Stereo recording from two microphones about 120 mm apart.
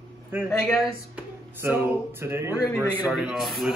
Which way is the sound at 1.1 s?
20° right (ahead or behind).